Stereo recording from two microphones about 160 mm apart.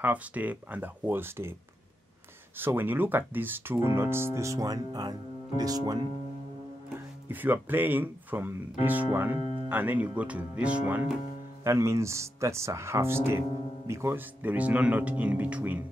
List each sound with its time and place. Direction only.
0.0 s speech: 10° right (ahead or behind)
2.6 s speech: 15° right (ahead or behind)
7.2 s speech: 10° right (ahead or behind)